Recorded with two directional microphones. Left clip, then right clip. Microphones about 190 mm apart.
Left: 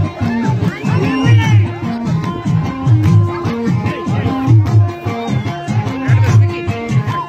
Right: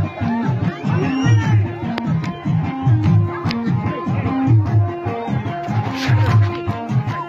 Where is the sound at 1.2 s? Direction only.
40° right (ahead or behind).